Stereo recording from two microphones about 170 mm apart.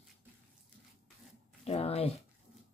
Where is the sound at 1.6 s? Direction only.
35° left (ahead or behind).